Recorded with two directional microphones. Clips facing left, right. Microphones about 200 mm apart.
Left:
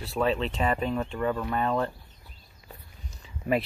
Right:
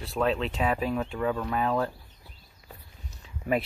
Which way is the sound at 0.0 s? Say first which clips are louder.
Even; centre (ahead or behind).